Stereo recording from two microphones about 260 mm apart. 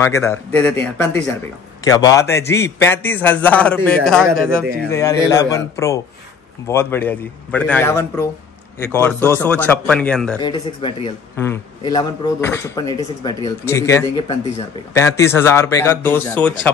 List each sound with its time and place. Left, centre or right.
0.0 s a man's voice: centre
10.4 s a man's voice: centre